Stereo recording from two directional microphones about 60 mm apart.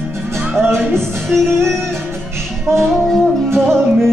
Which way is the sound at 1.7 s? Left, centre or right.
Right.